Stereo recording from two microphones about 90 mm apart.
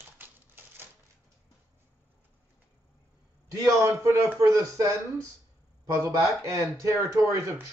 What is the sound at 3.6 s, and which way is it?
Speech, 35° right (ahead or behind).